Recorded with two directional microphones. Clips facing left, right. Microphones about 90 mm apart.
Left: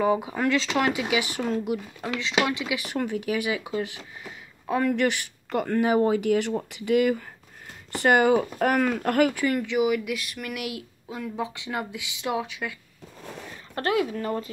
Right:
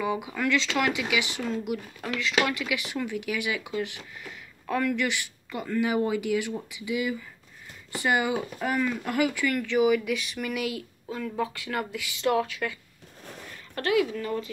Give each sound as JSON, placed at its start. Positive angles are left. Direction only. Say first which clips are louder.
{"t": 0.0, "sound": "speech", "louder": "left 5 dB", "side_deg": 35}
{"t": 2.8, "sound": "speech", "louder": "left 3 dB", "side_deg": 45}
{"t": 4.2, "sound": "a sound", "louder": "left 1 dB", "side_deg": 20}
{"t": 4.8, "sound": "speech", "louder": "left 4 dB", "side_deg": 50}
{"t": 5.8, "sound": "speech", "louder": "left 3 dB", "side_deg": 40}
{"t": 9.7, "sound": "speech", "louder": "right 1 dB", "side_deg": 5}
{"t": 13.7, "sound": "speech", "louder": "even", "side_deg": 35}